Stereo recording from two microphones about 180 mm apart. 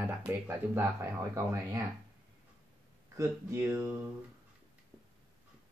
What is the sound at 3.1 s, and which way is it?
Speech, 15° right (ahead or behind).